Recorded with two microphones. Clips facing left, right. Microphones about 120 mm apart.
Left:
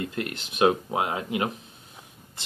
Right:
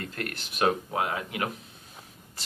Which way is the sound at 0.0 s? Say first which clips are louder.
Left 4 dB; 20° left (ahead or behind).